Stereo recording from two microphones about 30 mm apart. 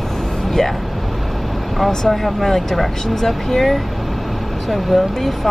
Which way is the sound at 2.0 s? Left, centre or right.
Centre.